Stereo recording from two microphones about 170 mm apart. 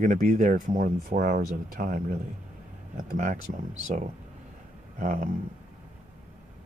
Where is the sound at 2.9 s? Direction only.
45° right (ahead or behind).